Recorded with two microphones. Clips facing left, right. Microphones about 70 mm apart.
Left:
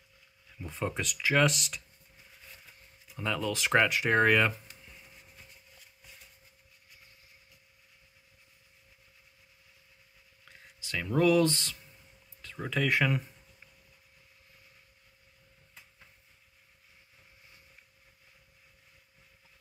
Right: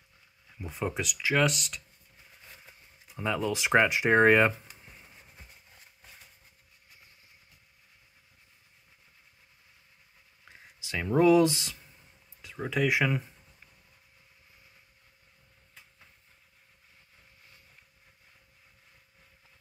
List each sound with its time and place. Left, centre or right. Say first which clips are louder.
0.6 s speech: right 1 dB; centre
2.4 s a sound: right 2 dB; right
10.4 s speech: right 1 dB; right